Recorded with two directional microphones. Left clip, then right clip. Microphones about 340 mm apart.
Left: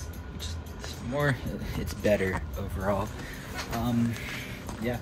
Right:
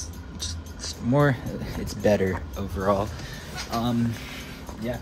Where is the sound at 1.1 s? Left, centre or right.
Centre.